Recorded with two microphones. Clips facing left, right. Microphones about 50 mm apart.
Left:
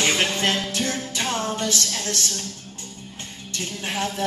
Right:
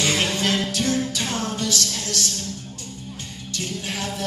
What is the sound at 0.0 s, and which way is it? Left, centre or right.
Music, left.